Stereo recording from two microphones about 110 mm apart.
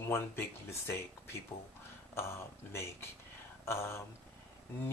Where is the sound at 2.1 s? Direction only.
25° left (ahead or behind).